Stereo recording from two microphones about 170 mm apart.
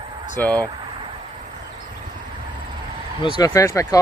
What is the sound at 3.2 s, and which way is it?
Speech, 20° left (ahead or behind).